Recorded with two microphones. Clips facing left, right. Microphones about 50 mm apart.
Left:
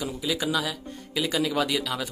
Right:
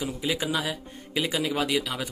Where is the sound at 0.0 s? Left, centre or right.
Right.